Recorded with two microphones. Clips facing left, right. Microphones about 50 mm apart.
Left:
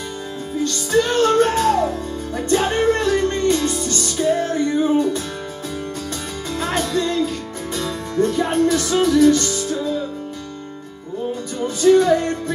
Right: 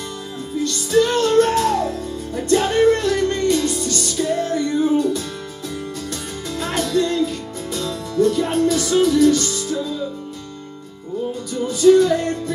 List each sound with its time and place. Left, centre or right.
0.7 s music: left
6.5 s music: left
11.7 s music: left